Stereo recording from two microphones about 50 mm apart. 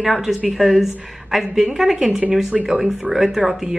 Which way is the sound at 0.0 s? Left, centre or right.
Centre.